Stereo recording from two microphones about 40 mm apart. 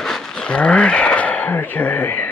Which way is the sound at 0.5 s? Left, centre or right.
Left.